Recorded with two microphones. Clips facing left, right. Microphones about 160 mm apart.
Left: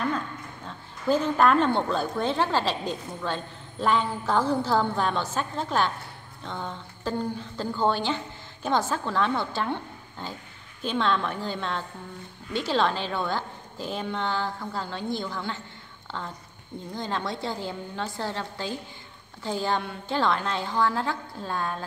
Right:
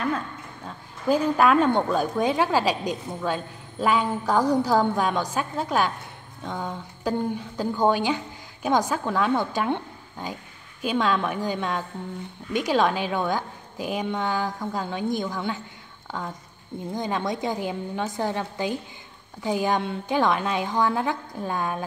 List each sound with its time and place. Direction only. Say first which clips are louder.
1.0 s a woman's voice: right 2 dB; 10° right (ahead or behind)